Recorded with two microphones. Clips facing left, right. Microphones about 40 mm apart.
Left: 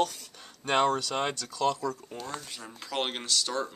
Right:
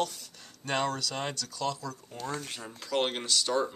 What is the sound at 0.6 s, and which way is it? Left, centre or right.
Speech, left.